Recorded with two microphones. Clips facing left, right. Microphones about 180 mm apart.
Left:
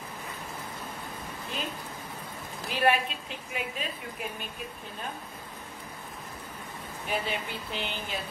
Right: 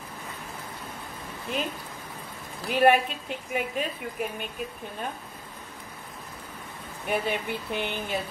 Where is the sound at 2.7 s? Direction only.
50° right (ahead or behind).